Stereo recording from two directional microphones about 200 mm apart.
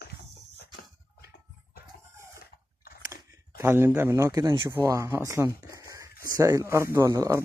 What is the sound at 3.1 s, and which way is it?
Speech, 10° right (ahead or behind).